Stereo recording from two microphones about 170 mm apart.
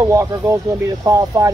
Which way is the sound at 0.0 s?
15° right (ahead or behind).